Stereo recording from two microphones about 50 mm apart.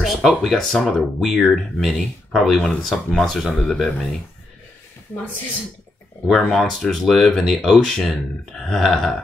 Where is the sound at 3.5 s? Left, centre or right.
Centre.